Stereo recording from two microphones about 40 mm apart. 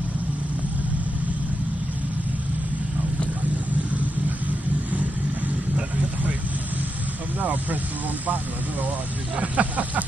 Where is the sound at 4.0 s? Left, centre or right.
Right.